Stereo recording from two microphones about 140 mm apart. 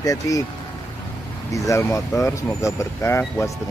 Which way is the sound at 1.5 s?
20° left (ahead or behind).